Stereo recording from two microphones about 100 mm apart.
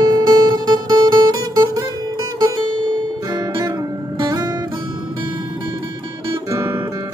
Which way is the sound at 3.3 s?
35° right (ahead or behind).